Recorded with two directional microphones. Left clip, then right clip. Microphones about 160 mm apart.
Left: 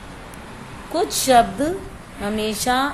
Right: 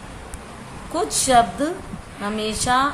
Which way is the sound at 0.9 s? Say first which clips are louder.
Left 1 dB; 15° left (ahead or behind).